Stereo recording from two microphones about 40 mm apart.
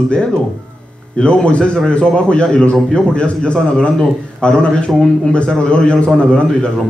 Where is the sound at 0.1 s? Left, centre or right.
Left.